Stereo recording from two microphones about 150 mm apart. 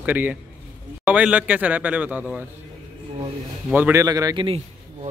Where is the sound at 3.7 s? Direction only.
10° right (ahead or behind).